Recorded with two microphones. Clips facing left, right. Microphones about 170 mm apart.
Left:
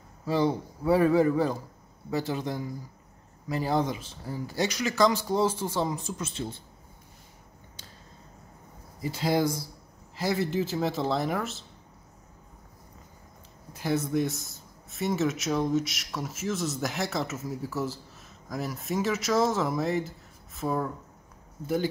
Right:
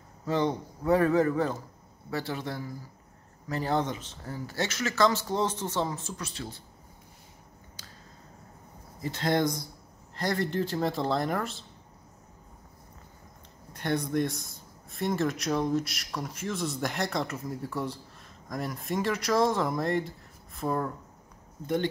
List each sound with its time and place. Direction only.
0.2 s speech: 10° left (ahead or behind)
9.0 s speech: 10° left (ahead or behind)
13.7 s speech: 5° left (ahead or behind)